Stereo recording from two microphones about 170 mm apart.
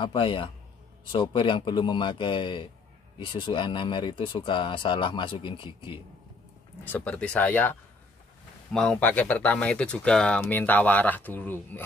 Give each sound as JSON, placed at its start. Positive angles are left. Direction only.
{"t": 0.0, "sound": "speech", "side_deg": 30}
{"t": 6.8, "sound": "speech", "side_deg": 10}
{"t": 8.7, "sound": "speech", "side_deg": 5}